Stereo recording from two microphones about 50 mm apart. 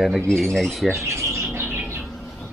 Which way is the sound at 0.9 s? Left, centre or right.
Right.